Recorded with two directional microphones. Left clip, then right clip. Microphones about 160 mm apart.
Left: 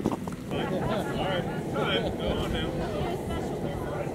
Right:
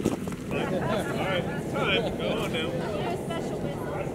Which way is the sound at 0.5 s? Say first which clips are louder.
Right 1 dB; centre (ahead or behind).